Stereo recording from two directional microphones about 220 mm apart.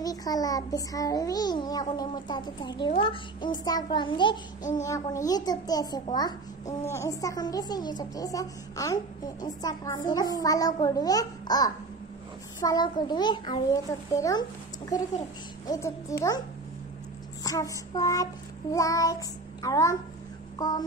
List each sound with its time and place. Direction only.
0.0 s a woman's voice: 15° left (ahead or behind)
15.6 s a woman's voice: 15° left (ahead or behind)
17.4 s child singing: 15° left (ahead or behind)
20.5 s speech: 15° left (ahead or behind)